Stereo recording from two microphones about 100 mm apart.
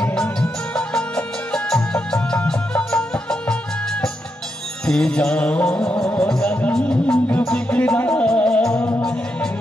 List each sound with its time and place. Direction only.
0.0 s music: 5° left (ahead or behind)